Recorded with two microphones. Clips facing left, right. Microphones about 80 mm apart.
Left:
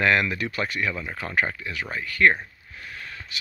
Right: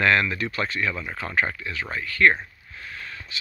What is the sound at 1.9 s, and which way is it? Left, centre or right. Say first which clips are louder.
Speech: even; left.